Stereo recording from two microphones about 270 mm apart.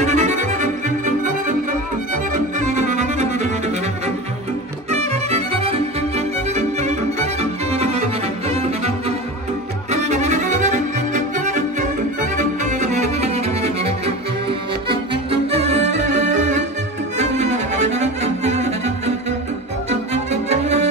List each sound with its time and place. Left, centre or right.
0.0 s music: right
2.7 s music: right
4.9 s music: right
15.5 s music: right